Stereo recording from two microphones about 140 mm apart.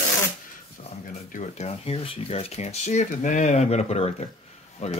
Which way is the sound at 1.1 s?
65° left (ahead or behind).